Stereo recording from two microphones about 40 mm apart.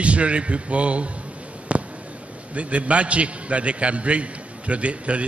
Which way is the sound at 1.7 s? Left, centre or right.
Right.